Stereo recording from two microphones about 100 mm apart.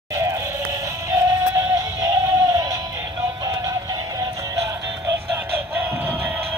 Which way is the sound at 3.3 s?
35° right (ahead or behind).